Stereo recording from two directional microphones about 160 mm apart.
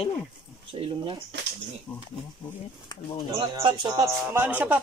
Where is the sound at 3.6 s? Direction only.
30° right (ahead or behind); by 4.8 s 10° right (ahead or behind).